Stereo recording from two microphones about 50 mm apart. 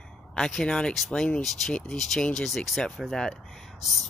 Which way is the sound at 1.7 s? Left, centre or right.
Centre.